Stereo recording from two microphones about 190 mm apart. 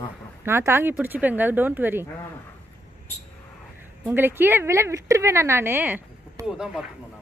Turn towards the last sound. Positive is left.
turn(degrees=-5)  # may be behind; listen again after turning